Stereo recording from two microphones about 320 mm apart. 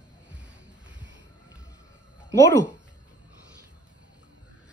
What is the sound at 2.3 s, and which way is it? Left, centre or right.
Speech, right.